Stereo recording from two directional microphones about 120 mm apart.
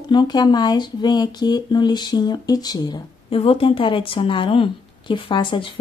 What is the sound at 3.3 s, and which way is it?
Speech, 50° left (ahead or behind).